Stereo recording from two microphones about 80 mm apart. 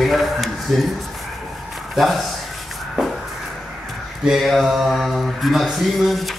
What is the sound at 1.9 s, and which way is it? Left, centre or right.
Speech, centre.